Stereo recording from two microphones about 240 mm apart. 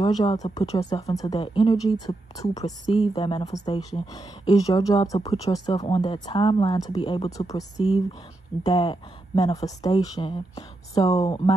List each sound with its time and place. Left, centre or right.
0.0 s speech: left
8.6 s speech: centre